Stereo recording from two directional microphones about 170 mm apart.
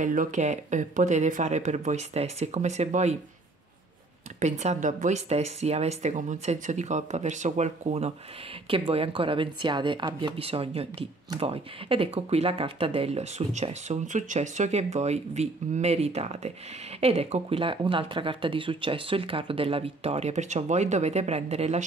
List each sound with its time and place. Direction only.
0.0 s speech: 50° right (ahead or behind)
4.4 s speech: 45° right (ahead or behind)